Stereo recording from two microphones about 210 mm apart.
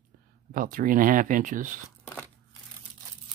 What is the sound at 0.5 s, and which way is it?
Speech, 40° right (ahead or behind).